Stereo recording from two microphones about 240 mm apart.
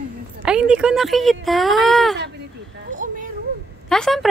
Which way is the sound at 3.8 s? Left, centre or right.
Centre.